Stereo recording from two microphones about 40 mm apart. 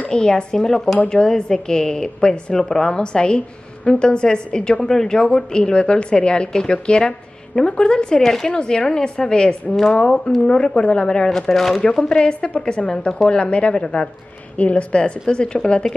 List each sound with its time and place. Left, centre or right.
0.1 s a woman's voice: centre
8.5 s a woman's voice: left
10.4 s a woman's voice: left
11.2 s speech: centre
12.1 s a woman's voice: left